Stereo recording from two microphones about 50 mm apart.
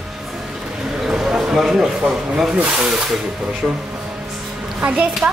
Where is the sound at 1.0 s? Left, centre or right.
Centre.